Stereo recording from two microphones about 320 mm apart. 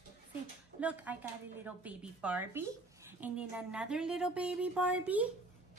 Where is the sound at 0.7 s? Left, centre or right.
Centre.